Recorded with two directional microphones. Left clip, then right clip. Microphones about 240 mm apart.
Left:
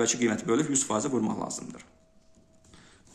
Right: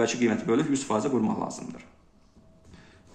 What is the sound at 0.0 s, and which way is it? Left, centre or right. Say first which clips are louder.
Speech: right 2 dB; left.